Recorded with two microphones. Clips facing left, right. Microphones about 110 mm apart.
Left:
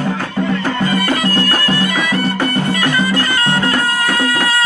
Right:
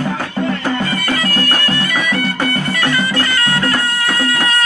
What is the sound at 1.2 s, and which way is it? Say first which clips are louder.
Music: left 2 dB; 25° left (ahead or behind).